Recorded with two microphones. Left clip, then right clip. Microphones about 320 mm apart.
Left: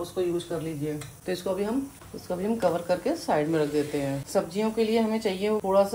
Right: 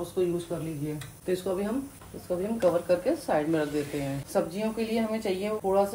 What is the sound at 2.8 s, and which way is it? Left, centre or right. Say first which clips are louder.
Speech: even; left.